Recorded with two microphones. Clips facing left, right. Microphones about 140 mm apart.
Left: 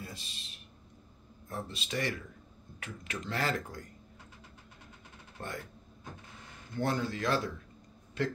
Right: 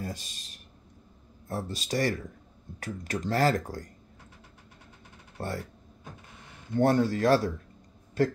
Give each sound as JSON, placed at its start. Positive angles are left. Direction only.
{"t": 0.0, "sound": "speech", "side_deg": -40}
{"t": 5.4, "sound": "speech", "side_deg": -35}
{"t": 6.8, "sound": "speech", "side_deg": -50}